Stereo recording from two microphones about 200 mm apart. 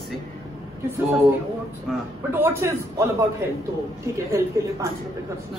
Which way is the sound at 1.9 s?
Centre (ahead or behind).